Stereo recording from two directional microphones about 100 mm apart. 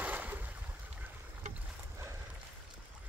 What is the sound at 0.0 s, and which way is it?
Boat, 15° right (ahead or behind).